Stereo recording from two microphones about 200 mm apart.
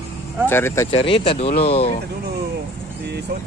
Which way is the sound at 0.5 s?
15° left (ahead or behind).